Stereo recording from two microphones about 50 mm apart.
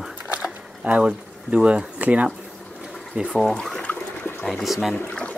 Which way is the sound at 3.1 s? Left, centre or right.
Centre.